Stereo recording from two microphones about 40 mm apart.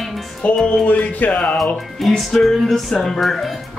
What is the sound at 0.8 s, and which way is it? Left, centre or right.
Speech, left.